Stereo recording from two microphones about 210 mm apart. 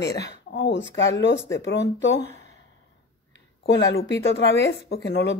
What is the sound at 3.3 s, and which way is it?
A woman's voice, 55° left (ahead or behind).